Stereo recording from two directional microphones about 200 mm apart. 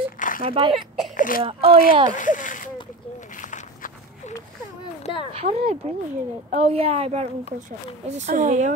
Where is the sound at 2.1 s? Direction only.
40° left (ahead or behind).